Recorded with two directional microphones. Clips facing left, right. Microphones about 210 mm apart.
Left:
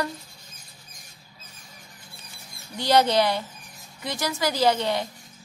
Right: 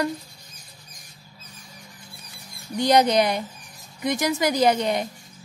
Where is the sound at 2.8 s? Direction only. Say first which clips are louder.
Right 2 dB; 15° right (ahead or behind).